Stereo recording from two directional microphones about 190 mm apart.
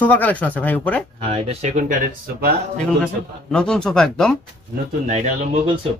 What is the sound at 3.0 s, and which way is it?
A man's voice, 5° left (ahead or behind).